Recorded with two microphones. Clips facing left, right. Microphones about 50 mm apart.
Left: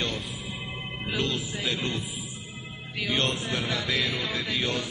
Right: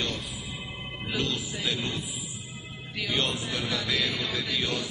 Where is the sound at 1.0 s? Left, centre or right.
Centre.